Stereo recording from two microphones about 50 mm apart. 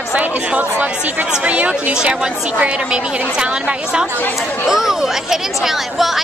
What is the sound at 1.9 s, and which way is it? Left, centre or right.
A woman's voice, centre.